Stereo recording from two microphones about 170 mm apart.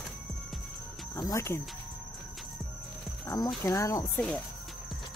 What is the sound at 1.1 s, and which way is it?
Cricket, 20° left (ahead or behind).